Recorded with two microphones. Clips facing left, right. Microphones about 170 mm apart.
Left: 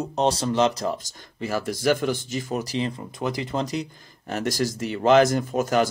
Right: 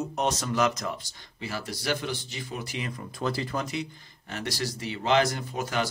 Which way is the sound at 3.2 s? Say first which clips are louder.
Left 3 dB; 20° left (ahead or behind).